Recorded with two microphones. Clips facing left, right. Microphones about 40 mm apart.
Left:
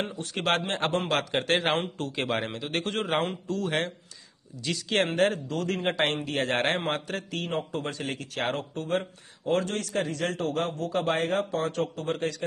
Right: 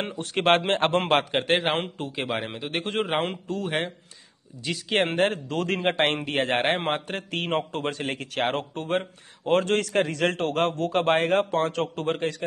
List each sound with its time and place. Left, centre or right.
0.0 s a man's voice: right
1.3 s a man's voice: right
2.0 s speech: centre
2.2 s speech: centre
2.5 s a man's voice: right
5.0 s a man's voice: right